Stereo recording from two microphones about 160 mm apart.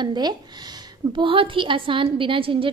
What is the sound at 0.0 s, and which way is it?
A woman's voice, 30° right (ahead or behind).